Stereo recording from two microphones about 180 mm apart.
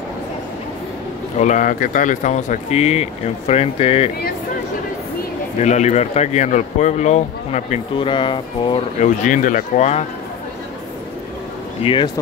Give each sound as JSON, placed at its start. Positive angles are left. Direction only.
{"t": 1.4, "sound": "speech", "side_deg": 45}
{"t": 5.6, "sound": "speech", "side_deg": 40}
{"t": 9.0, "sound": "speech", "side_deg": 45}
{"t": 11.8, "sound": "speech", "side_deg": 30}